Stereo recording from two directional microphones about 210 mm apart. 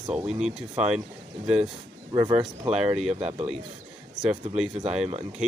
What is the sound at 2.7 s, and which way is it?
Speech, 5° right (ahead or behind).